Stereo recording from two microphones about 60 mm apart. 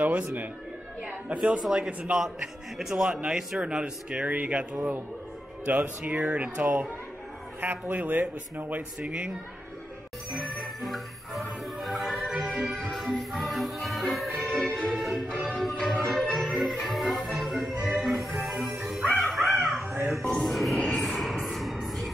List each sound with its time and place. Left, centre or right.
0.0 s speech: right
1.3 s speech: centre
2.4 s speech: centre
5.7 s speech: right
10.3 s music: centre